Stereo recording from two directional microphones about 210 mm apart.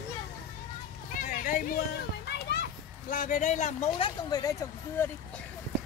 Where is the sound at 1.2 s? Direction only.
40° left (ahead or behind).